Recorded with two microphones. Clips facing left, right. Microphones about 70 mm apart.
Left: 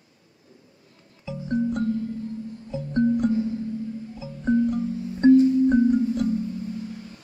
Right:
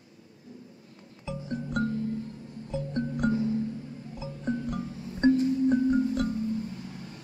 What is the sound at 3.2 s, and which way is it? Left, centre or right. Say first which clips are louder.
Music: left 3 dB; right.